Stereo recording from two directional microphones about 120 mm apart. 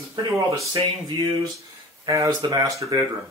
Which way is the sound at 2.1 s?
30° right (ahead or behind).